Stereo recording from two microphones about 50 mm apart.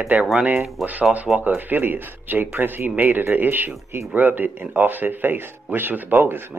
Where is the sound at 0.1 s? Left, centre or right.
Right.